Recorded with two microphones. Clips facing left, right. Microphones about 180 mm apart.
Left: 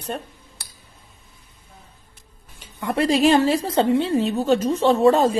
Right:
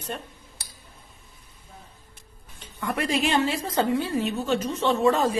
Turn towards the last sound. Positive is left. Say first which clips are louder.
# left 6 dB
turn(degrees=35)  # may be behind; listen again after turning